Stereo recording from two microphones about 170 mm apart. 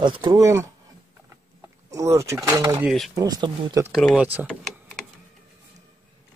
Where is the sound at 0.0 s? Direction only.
30° right (ahead or behind).